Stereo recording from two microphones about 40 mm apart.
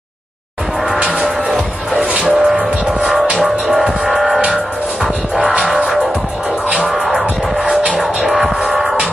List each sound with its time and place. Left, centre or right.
1.0 s music: centre
4.1 s music: centre
5.3 s music: right